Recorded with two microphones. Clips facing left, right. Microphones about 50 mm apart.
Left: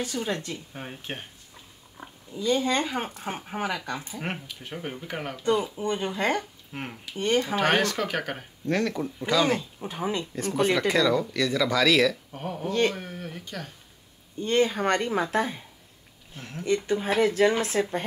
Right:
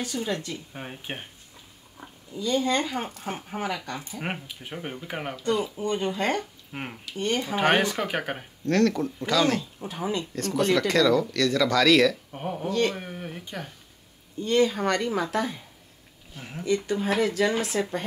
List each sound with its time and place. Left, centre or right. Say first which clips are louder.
0.0 s speech: even; left
0.7 s speech: even; centre
2.3 s speech: even; left
4.2 s speech: right 1 dB; centre
5.3 s speech: left 2 dB; left
6.7 s speech: even; centre
7.1 s speech: left 3 dB; left
7.6 s speech: right 1 dB; centre
8.6 s speech: right 4 dB; centre
12.3 s speech: right 1 dB; centre
14.4 s speech: right 1 dB; left
16.3 s speech: even; centre
16.6 s speech: even; left